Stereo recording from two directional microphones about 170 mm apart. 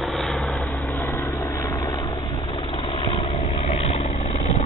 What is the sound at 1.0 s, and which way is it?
Vehicle, 15° left (ahead or behind).